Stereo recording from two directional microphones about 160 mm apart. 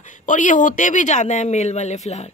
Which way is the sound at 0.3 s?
55° left (ahead or behind).